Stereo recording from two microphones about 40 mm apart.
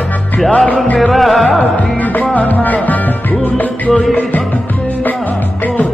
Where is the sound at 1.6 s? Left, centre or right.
Left.